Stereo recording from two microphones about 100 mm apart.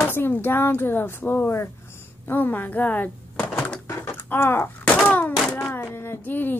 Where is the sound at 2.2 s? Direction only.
20° left (ahead or behind).